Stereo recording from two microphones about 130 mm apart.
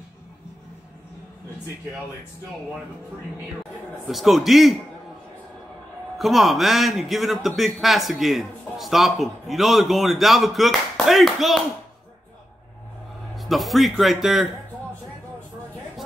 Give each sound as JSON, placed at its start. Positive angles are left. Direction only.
{"t": 4.1, "sound": "a man's voice", "side_deg": 0}
{"t": 6.1, "sound": "a man's voice", "side_deg": 0}
{"t": 13.4, "sound": "a man's voice", "side_deg": 0}